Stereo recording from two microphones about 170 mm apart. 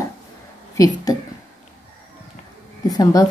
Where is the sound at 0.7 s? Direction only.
20° left (ahead or behind).